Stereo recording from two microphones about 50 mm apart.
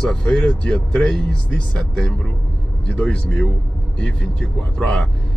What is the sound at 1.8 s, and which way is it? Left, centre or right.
Speech, centre.